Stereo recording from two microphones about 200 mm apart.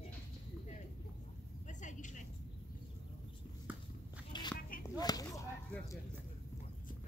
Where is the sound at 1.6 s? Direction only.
40° left (ahead or behind).